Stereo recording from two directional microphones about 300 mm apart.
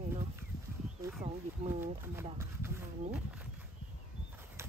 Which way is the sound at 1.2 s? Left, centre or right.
Centre.